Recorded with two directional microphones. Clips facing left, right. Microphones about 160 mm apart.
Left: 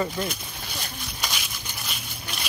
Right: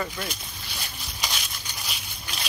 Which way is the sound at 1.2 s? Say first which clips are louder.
Right 1 dB; centre (ahead or behind).